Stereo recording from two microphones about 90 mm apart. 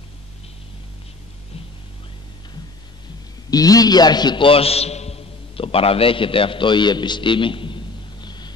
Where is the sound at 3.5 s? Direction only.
45° left (ahead or behind).